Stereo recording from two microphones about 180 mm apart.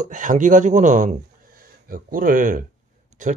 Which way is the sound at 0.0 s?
45° right (ahead or behind).